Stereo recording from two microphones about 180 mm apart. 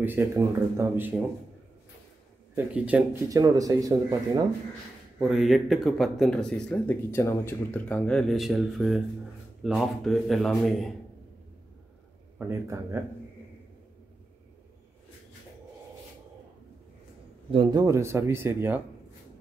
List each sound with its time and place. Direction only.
0.0 s speech: 10° right (ahead or behind)
2.5 s speech: 5° right (ahead or behind)
3.3 s speech: 20° right (ahead or behind)
5.2 s speech: centre (ahead or behind)
12.4 s speech: 15° right (ahead or behind)
17.5 s speech: 30° right (ahead or behind)
17.8 s speech: 15° right (ahead or behind)